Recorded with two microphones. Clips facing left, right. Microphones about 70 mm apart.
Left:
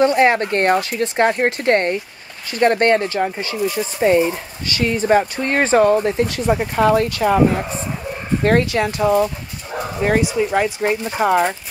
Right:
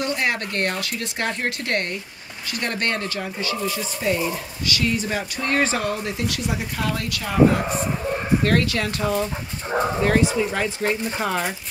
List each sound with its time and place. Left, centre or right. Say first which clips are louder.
0.0 s speech: left 10 dB; left
9.7 s dog: right 4 dB; right
10.0 s speech: left 6 dB; centre